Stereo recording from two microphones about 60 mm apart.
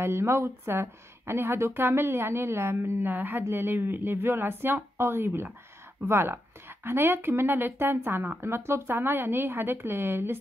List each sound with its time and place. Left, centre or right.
0.0 s speech: right